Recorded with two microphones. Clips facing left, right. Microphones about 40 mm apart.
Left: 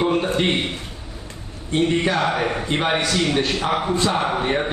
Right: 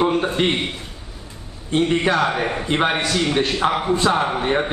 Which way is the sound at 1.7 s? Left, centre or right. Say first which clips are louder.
Right 1 dB; centre.